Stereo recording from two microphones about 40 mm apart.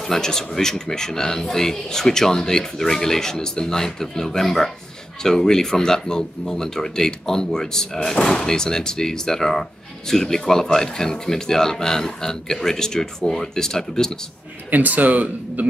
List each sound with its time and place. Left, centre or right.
0.0 s speech: centre
14.7 s speech: right